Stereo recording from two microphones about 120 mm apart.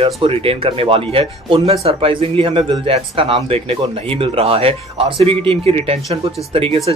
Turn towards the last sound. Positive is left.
turn(degrees=-55)  # may be behind; listen again after turning